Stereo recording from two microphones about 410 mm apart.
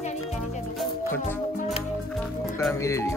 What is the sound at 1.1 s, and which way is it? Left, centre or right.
Music, centre.